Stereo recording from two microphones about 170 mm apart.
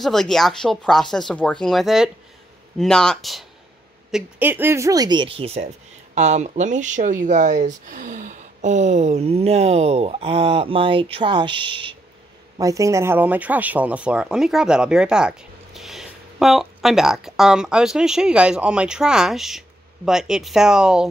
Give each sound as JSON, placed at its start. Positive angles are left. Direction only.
{"t": 0.0, "sound": "speech", "side_deg": 0}
{"t": 4.1, "sound": "speech", "side_deg": -10}